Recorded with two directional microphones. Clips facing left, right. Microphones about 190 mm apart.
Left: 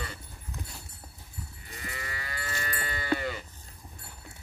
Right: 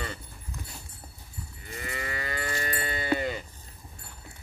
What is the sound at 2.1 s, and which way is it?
Moo, 60° right (ahead or behind).